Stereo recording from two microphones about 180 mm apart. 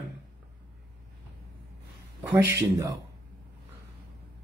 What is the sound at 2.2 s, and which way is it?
Speech, 15° right (ahead or behind).